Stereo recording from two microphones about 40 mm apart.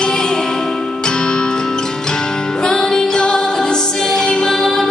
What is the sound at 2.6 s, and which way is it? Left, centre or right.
Music, centre.